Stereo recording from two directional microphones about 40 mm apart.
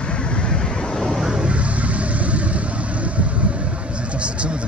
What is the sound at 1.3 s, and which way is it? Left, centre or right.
Vehicle, right.